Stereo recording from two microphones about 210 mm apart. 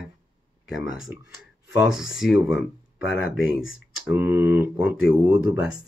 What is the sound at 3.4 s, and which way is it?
Speech, 65° left (ahead or behind).